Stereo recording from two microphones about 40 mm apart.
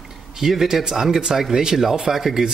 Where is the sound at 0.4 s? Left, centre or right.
Centre.